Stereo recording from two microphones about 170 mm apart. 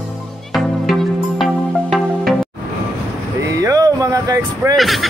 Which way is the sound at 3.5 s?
20° right (ahead or behind).